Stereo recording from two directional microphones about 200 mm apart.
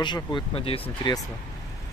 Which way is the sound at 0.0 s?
20° left (ahead or behind).